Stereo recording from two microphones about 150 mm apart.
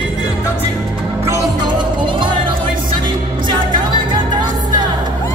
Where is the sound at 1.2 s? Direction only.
25° right (ahead or behind).